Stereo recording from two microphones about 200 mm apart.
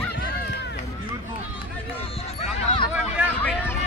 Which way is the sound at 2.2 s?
30° left (ahead or behind).